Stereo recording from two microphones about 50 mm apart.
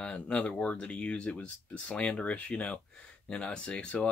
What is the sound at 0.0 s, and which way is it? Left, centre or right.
Speech, left.